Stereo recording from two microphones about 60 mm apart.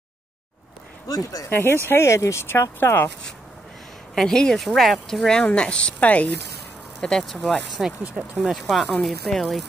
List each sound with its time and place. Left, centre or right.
1.0 s speech: left
1.5 s speech: left
2.1 s speech: left
2.4 s speech: left
4.1 s a woman's voice: centre; by 6.2 s left
7.0 s speech: centre